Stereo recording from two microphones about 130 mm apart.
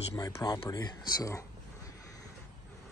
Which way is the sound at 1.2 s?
25° left (ahead or behind).